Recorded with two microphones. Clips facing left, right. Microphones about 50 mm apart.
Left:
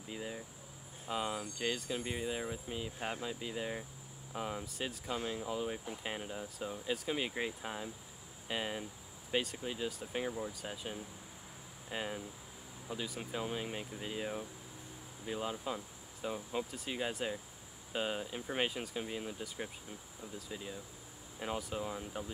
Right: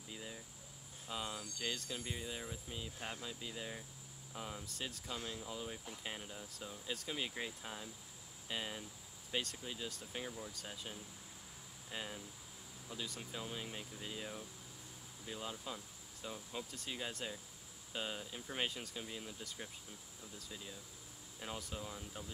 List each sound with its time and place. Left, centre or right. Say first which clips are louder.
0.1 s insect: left 7 dB; left
1.0 s speech: left 7 dB; left
9.3 s speech: left 6 dB; centre
9.6 s speech: left 7 dB; left
13.2 s speech: left 7 dB; left